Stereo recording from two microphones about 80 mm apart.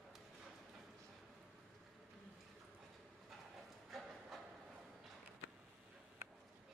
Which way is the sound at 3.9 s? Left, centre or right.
Centre.